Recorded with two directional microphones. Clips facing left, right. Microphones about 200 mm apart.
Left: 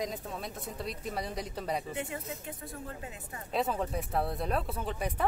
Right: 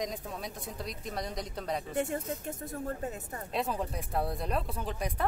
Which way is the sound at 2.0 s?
45° right (ahead or behind).